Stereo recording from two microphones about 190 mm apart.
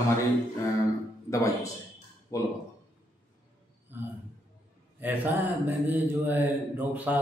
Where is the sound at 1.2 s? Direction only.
15° left (ahead or behind).